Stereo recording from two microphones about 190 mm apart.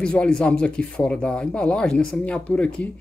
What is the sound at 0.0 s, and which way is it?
Speech, 5° left (ahead or behind).